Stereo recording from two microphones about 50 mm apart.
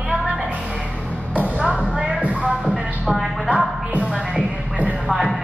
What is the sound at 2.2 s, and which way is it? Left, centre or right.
Music, right.